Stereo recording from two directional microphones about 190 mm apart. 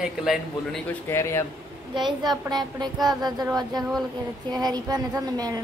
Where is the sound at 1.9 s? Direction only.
25° right (ahead or behind).